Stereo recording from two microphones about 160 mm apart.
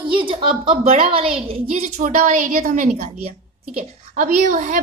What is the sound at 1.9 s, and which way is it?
A woman's voice, 45° right (ahead or behind).